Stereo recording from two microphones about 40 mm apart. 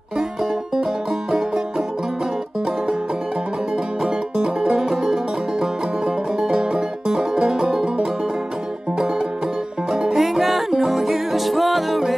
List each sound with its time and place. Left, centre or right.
4.0 s music: centre
10.1 s music: centre